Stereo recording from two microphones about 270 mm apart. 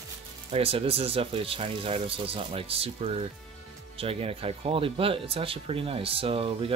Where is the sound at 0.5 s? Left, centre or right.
Right.